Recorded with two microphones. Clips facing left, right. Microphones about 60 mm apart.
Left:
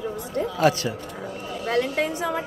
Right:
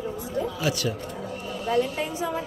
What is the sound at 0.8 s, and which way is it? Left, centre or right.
Speech, left.